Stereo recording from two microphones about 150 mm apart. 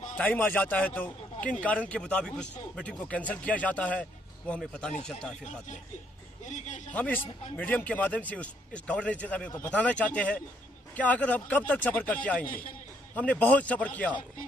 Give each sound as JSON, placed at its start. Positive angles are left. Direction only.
{"t": 0.2, "sound": "a man's voice", "side_deg": 10}
{"t": 6.4, "sound": "a man's voice", "side_deg": 55}
{"t": 6.9, "sound": "a man's voice", "side_deg": 10}